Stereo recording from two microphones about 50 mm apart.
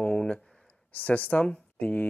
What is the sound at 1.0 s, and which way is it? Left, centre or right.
Speech, left.